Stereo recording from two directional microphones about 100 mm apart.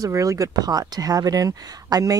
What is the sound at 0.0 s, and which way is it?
Speech, 35° right (ahead or behind).